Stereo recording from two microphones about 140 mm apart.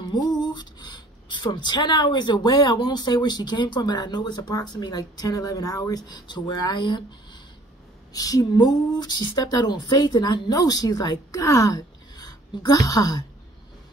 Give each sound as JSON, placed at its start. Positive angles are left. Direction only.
{"t": 0.1, "sound": "speech", "side_deg": 30}
{"t": 8.1, "sound": "speech", "side_deg": 25}